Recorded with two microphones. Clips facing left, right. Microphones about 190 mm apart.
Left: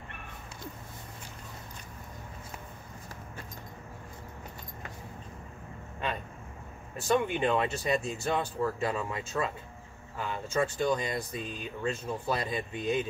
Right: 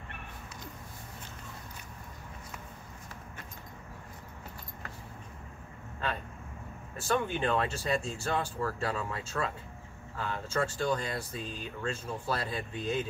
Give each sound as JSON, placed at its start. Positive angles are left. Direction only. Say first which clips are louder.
{"t": 6.0, "sound": "speech", "louder": "left 1 dB", "side_deg": 15}